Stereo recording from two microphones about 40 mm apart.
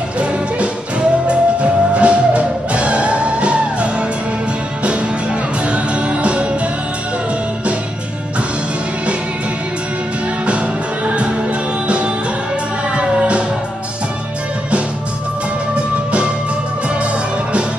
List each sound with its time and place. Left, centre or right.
0.2 s music: right
12.9 s music: right
15.7 s music: right